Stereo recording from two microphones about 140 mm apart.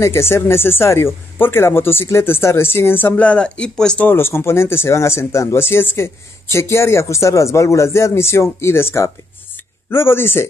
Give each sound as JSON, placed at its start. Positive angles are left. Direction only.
{"t": 0.0, "sound": "speech", "side_deg": 20}